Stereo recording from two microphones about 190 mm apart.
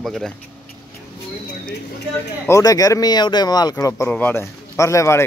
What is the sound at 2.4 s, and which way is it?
Speech, 15° left (ahead or behind).